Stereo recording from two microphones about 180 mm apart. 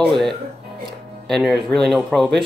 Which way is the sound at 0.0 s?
Centre (ahead or behind).